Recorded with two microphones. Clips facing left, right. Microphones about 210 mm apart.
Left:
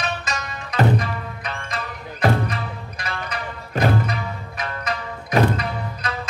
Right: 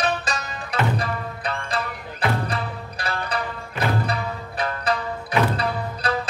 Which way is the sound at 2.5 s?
35° right (ahead or behind).